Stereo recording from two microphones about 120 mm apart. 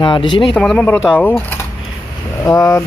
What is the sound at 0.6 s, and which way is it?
Speech, 10° left (ahead or behind).